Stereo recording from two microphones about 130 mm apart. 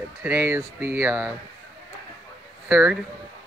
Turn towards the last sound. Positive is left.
turn(degrees=-5)  # may be behind; listen again after turning